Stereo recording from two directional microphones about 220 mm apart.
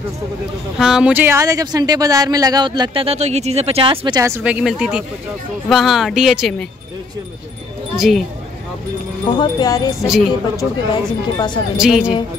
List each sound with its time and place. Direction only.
0.7 s speech: 5° right (ahead or behind)
7.9 s speech: centre (ahead or behind)
9.4 s speech: 15° left (ahead or behind)
10.0 s speech: centre (ahead or behind)
10.6 s speech: 20° left (ahead or behind)
11.7 s speech: 5° right (ahead or behind)